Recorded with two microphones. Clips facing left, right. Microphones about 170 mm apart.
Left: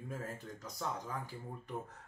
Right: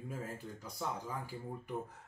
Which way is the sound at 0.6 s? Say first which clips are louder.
Even; 10° right (ahead or behind).